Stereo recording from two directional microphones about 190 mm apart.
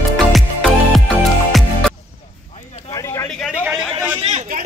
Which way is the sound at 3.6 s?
10° right (ahead or behind).